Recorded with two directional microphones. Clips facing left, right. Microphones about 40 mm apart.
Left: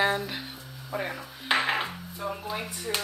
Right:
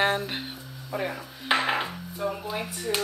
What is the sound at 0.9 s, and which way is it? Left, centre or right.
Dishes, centre.